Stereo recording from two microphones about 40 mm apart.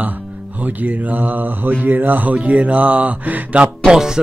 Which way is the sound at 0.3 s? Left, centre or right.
Right.